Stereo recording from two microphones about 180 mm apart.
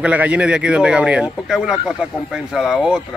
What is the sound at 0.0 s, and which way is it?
Speech, 5° right (ahead or behind).